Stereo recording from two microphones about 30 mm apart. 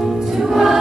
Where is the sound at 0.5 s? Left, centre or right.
Centre.